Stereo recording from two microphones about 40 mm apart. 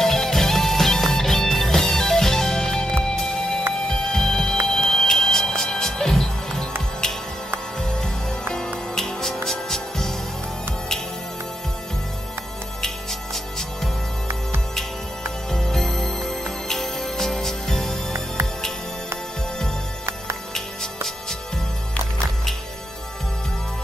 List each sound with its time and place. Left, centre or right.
0.0 s music: centre
8.0 s music: centre
12.8 s music: centre
15.5 s music: centre
20.5 s music: centre